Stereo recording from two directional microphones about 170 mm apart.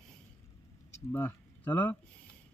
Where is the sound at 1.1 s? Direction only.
10° left (ahead or behind).